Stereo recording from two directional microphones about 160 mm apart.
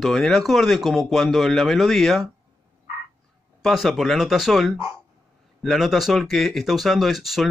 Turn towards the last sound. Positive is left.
turn(degrees=0)  # may be behind; listen again after turning